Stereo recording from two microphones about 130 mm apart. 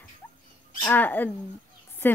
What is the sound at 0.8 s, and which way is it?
Speech, 15° left (ahead or behind).